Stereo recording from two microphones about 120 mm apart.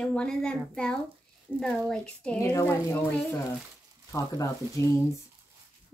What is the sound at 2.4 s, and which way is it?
Speech, 25° left (ahead or behind).